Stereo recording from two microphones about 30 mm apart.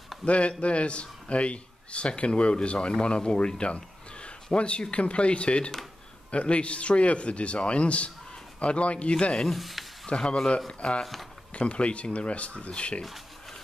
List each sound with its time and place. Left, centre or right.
0.2 s a man's voice: left
9.5 s speech: centre
10.0 s a man's voice: left